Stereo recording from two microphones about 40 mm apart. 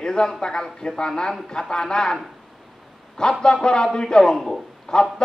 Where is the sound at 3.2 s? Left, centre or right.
Centre.